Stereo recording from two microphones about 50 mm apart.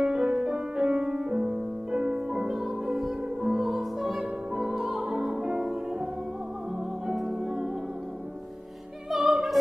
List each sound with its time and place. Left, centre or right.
0.0 s music: centre
7.2 s music: centre
9.1 s opera: centre